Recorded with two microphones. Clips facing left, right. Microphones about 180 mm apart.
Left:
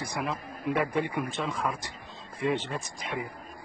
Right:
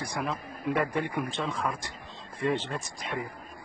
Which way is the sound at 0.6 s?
15° left (ahead or behind).